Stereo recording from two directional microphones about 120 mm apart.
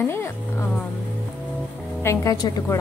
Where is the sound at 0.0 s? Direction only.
20° left (ahead or behind).